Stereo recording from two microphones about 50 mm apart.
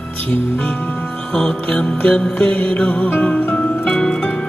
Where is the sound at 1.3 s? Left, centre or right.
Centre; by 3.6 s left.